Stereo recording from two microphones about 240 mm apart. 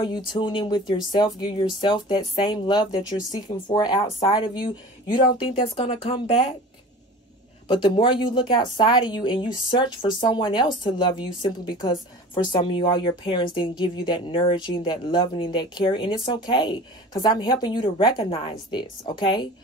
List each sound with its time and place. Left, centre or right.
0.3 s speech: centre
7.6 s speech: left